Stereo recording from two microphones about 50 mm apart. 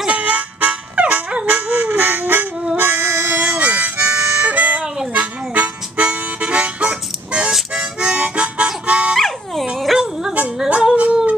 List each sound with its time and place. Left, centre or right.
0.1 s dog: right
3.3 s harmonica: right
9.1 s dog: centre
10.7 s a sound: centre